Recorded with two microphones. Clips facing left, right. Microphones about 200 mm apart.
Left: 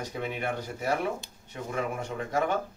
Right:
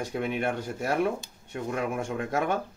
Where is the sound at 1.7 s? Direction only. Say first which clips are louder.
Right 1 dB; 50° right (ahead or behind).